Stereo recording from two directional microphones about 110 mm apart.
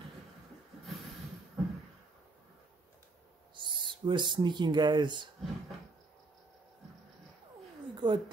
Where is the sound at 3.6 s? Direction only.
45° right (ahead or behind).